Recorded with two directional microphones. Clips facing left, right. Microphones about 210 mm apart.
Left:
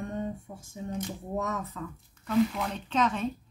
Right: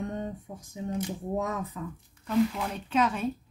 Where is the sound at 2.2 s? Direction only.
Centre (ahead or behind).